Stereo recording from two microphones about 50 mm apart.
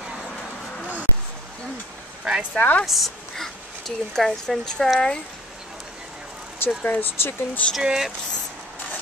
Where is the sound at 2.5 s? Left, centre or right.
Left.